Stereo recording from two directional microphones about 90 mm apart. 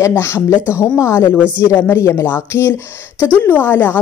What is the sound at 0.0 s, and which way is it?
Speech, 30° left (ahead or behind).